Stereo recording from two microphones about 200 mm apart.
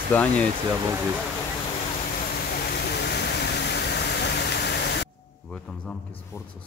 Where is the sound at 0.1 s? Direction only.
5° left (ahead or behind).